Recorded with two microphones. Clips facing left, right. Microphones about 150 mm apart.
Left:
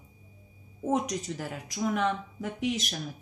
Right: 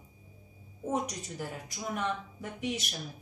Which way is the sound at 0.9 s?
90° left.